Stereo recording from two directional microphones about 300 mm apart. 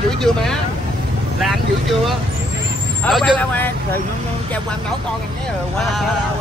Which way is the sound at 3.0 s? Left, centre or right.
Centre.